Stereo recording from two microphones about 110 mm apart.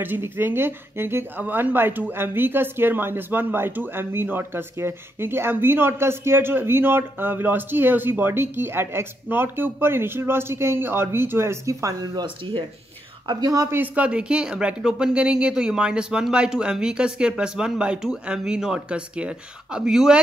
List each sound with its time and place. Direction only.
0.0 s a woman's voice: 20° right (ahead or behind)
13.7 s speech: 10° right (ahead or behind)